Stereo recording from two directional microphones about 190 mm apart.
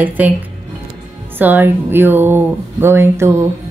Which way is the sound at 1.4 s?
10° right (ahead or behind).